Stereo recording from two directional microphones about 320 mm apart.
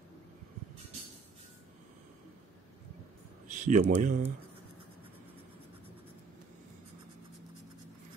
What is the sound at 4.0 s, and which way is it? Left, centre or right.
Speech, right.